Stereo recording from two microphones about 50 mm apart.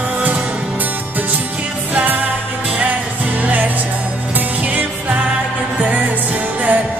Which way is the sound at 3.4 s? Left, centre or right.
Right.